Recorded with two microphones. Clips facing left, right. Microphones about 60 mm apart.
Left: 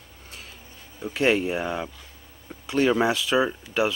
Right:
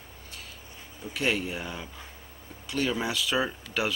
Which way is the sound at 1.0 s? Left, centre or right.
Left.